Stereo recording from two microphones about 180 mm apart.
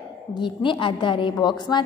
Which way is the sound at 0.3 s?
25° left (ahead or behind).